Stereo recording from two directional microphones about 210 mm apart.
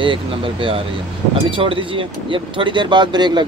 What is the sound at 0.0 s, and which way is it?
Speech, 25° right (ahead or behind).